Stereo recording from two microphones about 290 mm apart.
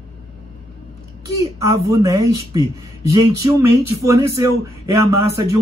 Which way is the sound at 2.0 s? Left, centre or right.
Centre.